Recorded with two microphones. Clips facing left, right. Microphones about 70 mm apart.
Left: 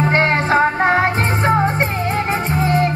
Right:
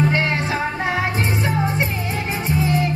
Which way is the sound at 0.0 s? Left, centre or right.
Left.